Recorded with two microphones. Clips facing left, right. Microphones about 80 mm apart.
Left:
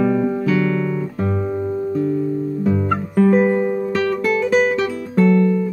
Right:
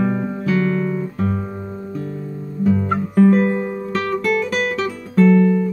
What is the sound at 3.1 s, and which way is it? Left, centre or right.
Music, centre.